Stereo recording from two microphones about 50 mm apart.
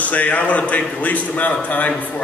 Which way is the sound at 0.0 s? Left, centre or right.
Left.